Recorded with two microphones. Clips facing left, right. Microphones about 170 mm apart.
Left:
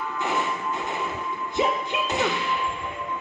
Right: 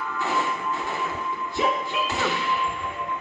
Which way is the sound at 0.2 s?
20° left (ahead or behind).